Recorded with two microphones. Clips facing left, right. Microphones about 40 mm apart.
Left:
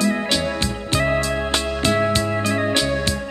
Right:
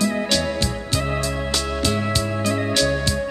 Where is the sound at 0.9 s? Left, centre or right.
Left.